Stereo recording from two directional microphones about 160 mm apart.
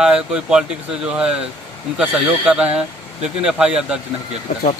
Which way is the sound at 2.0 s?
10° right (ahead or behind).